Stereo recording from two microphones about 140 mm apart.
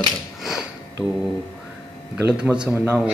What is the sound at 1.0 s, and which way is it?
Speech, 5° right (ahead or behind).